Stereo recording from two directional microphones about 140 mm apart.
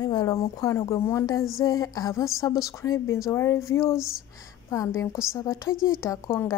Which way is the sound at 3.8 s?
5° right (ahead or behind).